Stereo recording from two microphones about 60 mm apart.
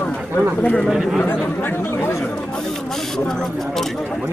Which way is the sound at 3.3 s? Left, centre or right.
Centre.